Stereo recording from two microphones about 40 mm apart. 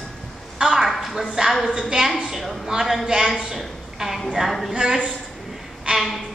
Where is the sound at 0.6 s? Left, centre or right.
Centre.